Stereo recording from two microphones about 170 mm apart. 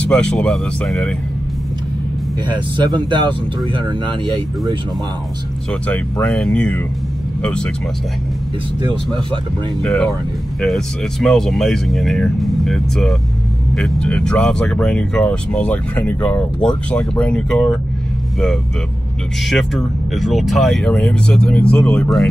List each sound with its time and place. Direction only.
0.0 s speech: 5° left (ahead or behind)
2.4 s speech: 25° right (ahead or behind)
5.7 s speech: 5° left (ahead or behind)
9.8 s speech: 5° left (ahead or behind)
19.4 s speech: centre (ahead or behind)